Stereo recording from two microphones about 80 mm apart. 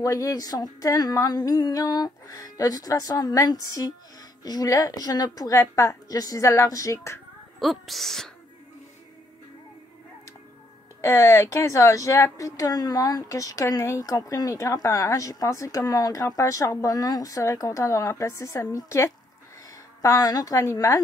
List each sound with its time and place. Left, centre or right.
0.0 s a woman's voice: left
7.6 s speech: centre
11.0 s a woman's voice: left